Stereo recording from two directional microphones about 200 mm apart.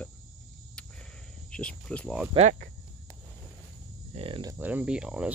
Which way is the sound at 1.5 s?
5° left (ahead or behind).